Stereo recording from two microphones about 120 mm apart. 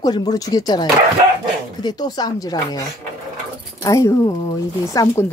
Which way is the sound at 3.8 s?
25° left (ahead or behind).